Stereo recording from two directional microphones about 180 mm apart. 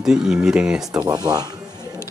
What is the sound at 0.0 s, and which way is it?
Speech, 5° right (ahead or behind).